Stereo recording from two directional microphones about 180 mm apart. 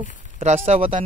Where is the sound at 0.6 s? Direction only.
30° right (ahead or behind).